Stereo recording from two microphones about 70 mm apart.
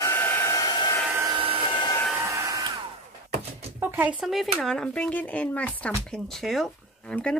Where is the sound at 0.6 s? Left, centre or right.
Left.